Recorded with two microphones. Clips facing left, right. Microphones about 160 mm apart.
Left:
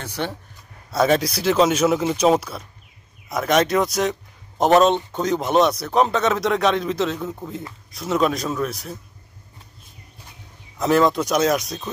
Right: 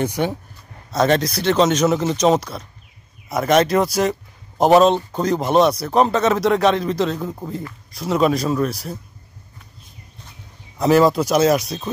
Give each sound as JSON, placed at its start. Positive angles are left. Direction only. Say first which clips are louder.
{"t": 0.0, "sound": "speech", "louder": "right 7 dB", "side_deg": -15}
{"t": 0.9, "sound": "a man's voice", "louder": "right 1 dB", "side_deg": 5}
{"t": 10.8, "sound": "a man's voice", "louder": "right 3 dB", "side_deg": -5}